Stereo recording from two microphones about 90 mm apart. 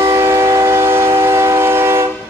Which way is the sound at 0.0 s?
35° right (ahead or behind).